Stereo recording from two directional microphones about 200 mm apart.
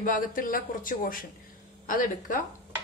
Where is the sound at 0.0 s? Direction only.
40° left (ahead or behind).